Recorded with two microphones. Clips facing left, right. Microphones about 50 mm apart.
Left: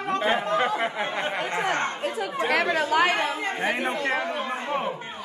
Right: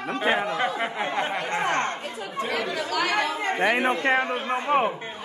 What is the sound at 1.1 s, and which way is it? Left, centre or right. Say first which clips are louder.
Chatter: right 1 dB; centre.